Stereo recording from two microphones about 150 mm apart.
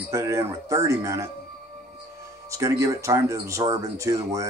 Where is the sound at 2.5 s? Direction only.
20° right (ahead or behind).